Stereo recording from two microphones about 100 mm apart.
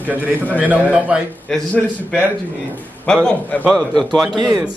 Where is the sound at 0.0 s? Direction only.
15° right (ahead or behind).